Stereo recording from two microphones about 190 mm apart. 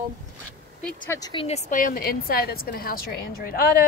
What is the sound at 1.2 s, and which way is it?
A woman's voice, 25° left (ahead or behind).